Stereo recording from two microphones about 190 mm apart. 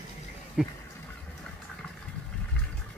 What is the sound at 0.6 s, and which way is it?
Speech, centre (ahead or behind).